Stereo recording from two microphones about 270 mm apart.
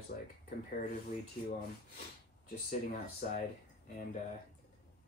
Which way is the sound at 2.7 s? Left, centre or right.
Left.